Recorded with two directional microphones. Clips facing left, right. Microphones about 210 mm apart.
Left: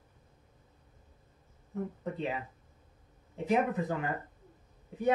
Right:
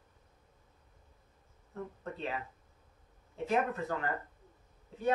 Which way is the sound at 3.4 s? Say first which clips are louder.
Left 3 dB; 15° left (ahead or behind).